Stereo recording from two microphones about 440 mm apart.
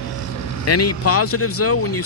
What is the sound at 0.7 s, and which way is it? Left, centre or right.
Speech, left.